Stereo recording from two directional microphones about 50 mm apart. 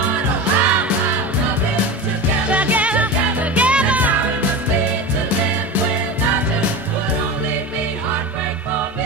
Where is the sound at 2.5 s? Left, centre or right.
Right.